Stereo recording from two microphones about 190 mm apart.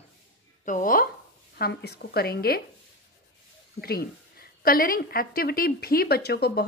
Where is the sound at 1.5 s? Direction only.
55° left (ahead or behind).